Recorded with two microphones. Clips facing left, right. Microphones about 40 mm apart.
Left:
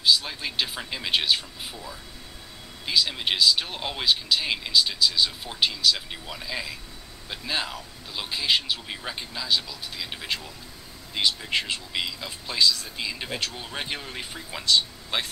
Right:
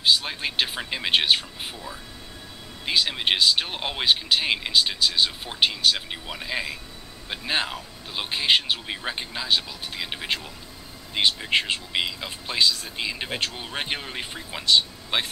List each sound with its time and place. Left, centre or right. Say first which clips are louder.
0.0 s speech: right 1 dB; right
2.8 s speech: right 2 dB; right